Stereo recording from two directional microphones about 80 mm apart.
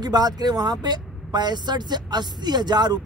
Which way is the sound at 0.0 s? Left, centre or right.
Right.